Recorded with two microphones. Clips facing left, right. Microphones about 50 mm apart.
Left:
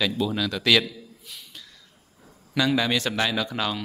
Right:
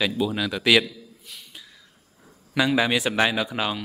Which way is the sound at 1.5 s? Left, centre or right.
Centre.